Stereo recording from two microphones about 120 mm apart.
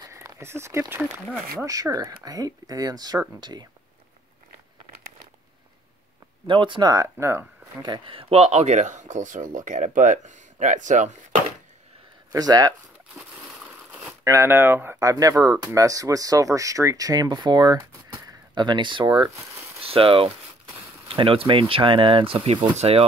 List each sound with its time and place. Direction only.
0.0 s a sound: 30° right (ahead or behind)
1.7 s speech: 30° right (ahead or behind)
6.4 s speech: 45° right (ahead or behind); by 7.4 s 20° right (ahead or behind)
7.8 s speech: 40° right (ahead or behind); by 11.1 s 90° right
12.3 s speech: 30° right (ahead or behind)
13.2 s a sound: 5° right (ahead or behind)
14.2 s speech: 25° right (ahead or behind)
15.0 s speech: 30° right (ahead or behind); by 23.0 s 55° right (ahead or behind)